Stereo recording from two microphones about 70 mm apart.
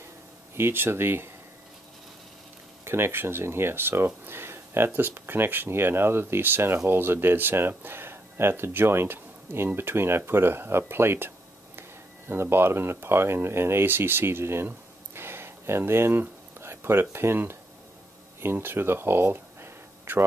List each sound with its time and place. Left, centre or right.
0.6 s speech: right
2.8 s speech: right
15.1 s a sound: right
18.4 s speech: right